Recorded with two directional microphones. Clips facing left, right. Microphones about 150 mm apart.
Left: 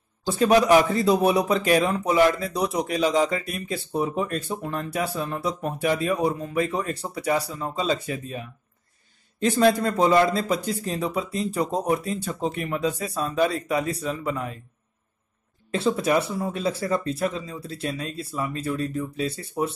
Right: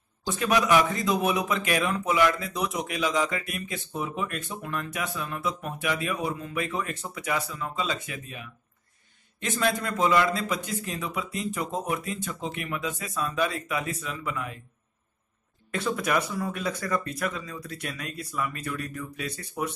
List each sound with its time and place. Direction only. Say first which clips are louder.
0.3 s a man's voice: left 6 dB; 35° left (ahead or behind)
15.7 s speech: left 5 dB; 30° left (ahead or behind)